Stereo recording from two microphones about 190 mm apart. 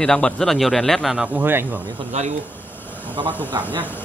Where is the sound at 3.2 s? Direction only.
25° right (ahead or behind).